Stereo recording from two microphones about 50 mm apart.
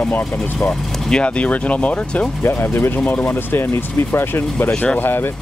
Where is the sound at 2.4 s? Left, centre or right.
Left.